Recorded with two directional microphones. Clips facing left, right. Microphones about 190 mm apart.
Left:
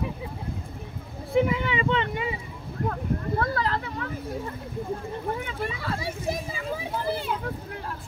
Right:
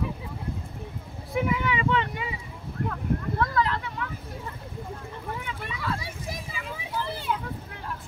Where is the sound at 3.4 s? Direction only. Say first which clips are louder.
Right 1 dB; 35° left (ahead or behind).